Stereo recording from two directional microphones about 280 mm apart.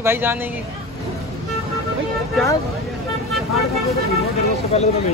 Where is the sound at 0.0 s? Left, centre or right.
Centre.